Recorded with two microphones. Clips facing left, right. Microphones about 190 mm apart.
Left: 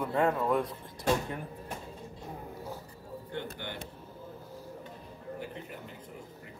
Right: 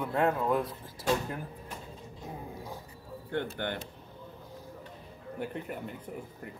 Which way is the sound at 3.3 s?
55° right (ahead or behind).